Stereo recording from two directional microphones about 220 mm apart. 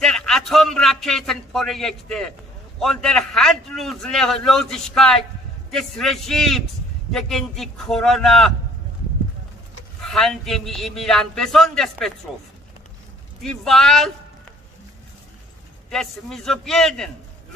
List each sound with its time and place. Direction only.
0.0 s a sound: 5° left (ahead or behind)
2.8 s a man's voice: centre (ahead or behind)
10.0 s a man's voice: centre (ahead or behind)
13.4 s a man's voice: centre (ahead or behind)
15.9 s a man's voice: centre (ahead or behind)